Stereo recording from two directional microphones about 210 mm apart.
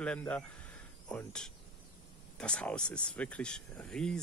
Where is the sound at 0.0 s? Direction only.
5° left (ahead or behind).